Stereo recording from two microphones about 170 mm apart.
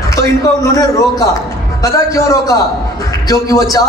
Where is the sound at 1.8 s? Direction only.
20° left (ahead or behind).